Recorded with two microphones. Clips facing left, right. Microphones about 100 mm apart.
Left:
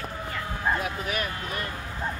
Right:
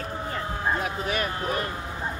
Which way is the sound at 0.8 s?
35° right (ahead or behind).